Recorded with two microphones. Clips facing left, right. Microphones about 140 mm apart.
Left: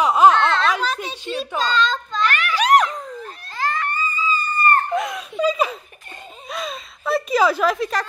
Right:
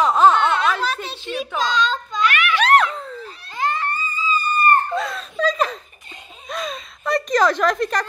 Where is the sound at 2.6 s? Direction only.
10° left (ahead or behind).